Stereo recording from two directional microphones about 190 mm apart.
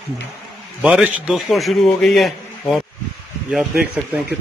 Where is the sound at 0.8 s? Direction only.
5° right (ahead or behind).